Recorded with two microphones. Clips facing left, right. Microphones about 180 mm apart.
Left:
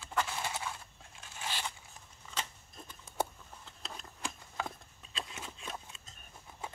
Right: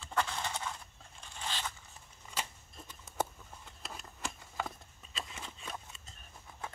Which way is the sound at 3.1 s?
5° right (ahead or behind).